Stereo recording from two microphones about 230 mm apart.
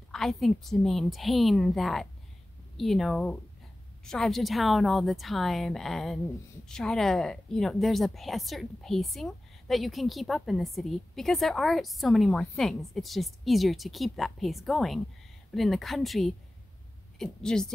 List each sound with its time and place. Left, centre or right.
0.1 s a woman's voice: centre